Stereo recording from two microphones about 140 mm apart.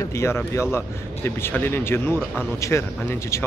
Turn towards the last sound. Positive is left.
turn(degrees=20)  # may be behind; listen again after turning